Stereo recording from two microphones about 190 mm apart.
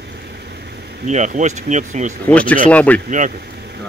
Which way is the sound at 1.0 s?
40° right (ahead or behind).